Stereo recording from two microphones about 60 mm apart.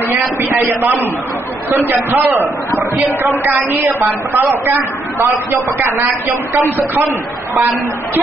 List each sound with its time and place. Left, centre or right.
0.1 s a man's voice: right
5.2 s a man's voice: right
5.8 s a woman's voice: right